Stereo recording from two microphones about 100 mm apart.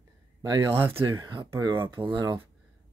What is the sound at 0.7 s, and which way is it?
Speech, 20° right (ahead or behind).